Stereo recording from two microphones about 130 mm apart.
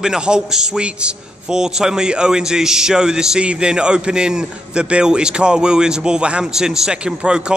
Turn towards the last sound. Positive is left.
turn(degrees=-5)  # may be behind; listen again after turning